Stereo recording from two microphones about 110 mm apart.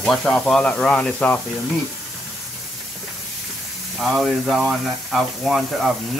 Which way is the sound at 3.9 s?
Centre (ahead or behind).